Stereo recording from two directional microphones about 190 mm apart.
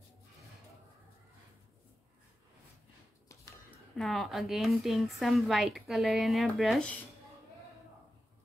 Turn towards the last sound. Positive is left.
turn(degrees=5)  # may be behind; listen again after turning